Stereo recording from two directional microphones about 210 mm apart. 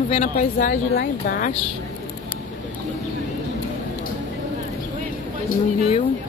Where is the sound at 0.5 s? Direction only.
45° left (ahead or behind).